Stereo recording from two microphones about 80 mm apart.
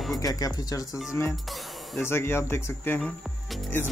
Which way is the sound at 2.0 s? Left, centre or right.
Left.